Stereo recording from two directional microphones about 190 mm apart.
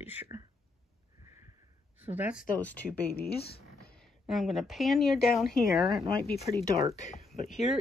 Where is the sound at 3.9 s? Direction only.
Centre (ahead or behind).